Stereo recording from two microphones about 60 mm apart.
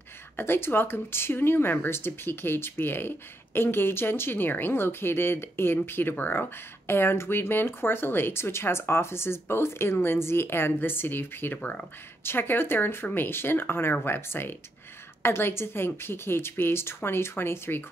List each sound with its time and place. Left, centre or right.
0.4 s speech: left
12.2 s speech: left